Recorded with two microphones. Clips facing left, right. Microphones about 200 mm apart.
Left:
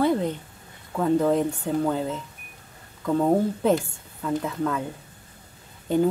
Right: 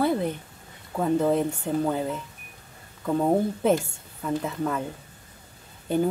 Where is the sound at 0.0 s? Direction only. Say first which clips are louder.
Left 2 dB; 10° right (ahead or behind).